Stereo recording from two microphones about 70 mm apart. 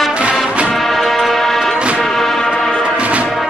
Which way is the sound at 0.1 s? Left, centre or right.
Centre.